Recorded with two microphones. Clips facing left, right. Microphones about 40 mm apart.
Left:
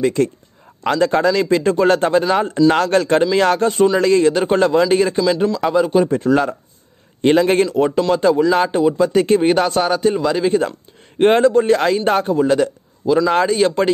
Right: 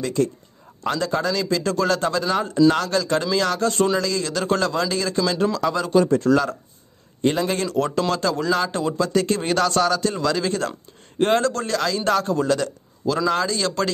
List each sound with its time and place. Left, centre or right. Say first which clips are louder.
0.0 s a man's voice: left 5 dB; left
5.1 s speech: left 5 dB; centre
7.2 s speech: left 8 dB; left
7.6 s speech: left 6 dB; left
11.1 s a man's voice: left 7 dB; left